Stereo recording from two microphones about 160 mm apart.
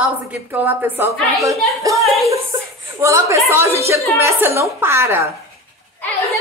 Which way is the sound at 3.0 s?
20° right (ahead or behind).